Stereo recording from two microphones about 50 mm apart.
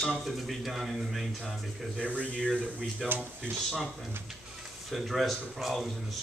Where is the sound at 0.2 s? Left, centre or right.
Centre.